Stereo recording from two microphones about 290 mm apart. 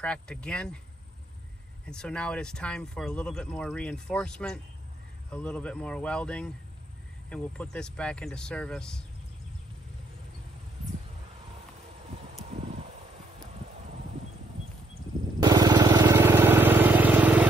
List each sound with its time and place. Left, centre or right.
0.0 s speech: centre
1.9 s speech: centre
12.4 s a sound: right
15.4 s vehicle: centre